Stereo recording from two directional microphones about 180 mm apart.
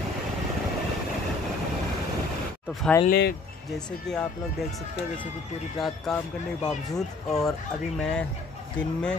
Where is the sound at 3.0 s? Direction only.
65° left (ahead or behind).